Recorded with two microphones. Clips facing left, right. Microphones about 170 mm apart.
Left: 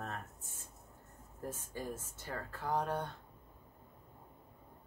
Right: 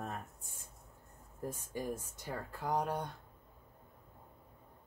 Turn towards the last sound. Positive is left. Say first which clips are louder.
# right 1 dB
turn(degrees=-15)  # may be behind; listen again after turning